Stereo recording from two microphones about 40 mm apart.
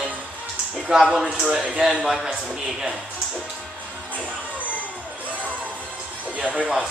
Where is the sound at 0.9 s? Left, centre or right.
Centre.